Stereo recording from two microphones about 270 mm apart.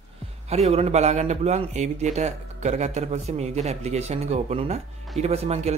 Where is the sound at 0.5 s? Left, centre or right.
Right.